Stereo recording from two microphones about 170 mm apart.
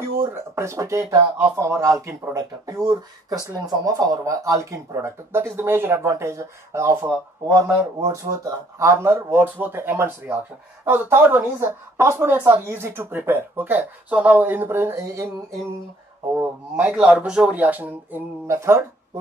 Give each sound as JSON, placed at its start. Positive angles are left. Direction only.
{"t": 0.2, "sound": "speech", "side_deg": -15}
{"t": 16.3, "sound": "speech", "side_deg": -10}